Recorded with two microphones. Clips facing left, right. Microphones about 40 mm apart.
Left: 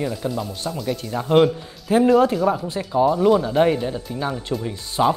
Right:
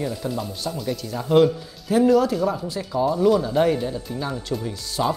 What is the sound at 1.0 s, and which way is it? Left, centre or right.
Speech, left.